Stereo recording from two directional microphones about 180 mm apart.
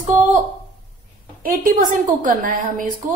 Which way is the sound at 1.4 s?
50° right (ahead or behind).